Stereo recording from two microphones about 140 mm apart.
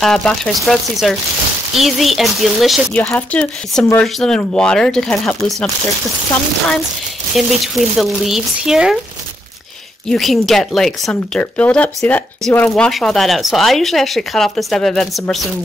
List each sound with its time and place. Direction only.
0.0 s speech: 5° left (ahead or behind)
2.9 s speech: 10° left (ahead or behind)
7.3 s speech: centre (ahead or behind)
10.0 s speech: centre (ahead or behind)